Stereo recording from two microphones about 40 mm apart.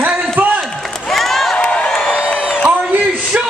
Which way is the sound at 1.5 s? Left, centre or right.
Left.